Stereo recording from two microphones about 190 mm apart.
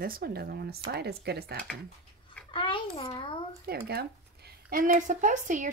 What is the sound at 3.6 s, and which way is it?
A woman's voice, 55° right (ahead or behind).